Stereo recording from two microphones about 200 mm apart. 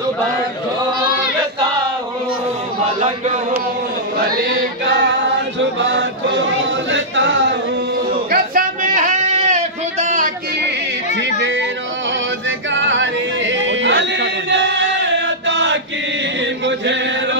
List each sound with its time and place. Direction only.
2.8 s a sound: 35° right (ahead or behind)
4.5 s chant: 55° right (ahead or behind)
8.3 s sheep: 45° right (ahead or behind)
11.1 s a sound: 65° right (ahead or behind)
12.4 s yodeling: 65° right (ahead or behind)
16.6 s chant: 65° right (ahead or behind)